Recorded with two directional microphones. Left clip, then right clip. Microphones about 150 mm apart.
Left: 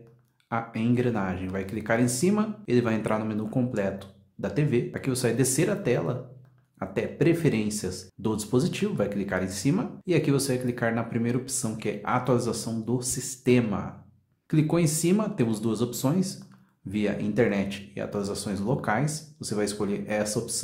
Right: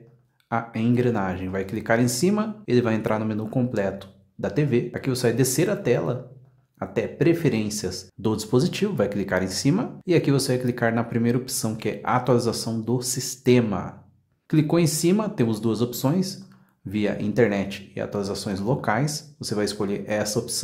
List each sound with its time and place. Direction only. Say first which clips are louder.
0.5 s speech: right 3 dB; 25° right (ahead or behind)